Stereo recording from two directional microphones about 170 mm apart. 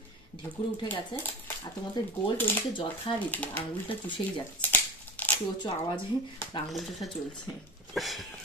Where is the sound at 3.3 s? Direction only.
10° left (ahead or behind).